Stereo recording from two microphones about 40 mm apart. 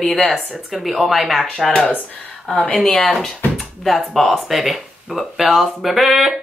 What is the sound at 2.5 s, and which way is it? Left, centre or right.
Speech, centre.